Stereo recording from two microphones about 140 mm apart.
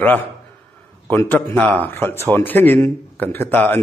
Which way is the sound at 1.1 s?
15° left (ahead or behind).